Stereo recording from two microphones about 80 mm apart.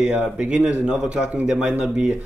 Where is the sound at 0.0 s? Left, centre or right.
Centre.